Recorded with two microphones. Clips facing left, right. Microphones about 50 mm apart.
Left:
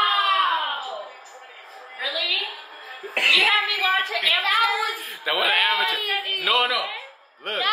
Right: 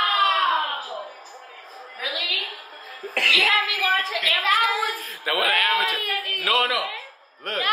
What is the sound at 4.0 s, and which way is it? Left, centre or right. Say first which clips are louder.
Speech: even; centre.